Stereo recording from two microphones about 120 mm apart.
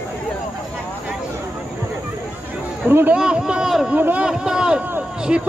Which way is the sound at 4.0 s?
10° right (ahead or behind).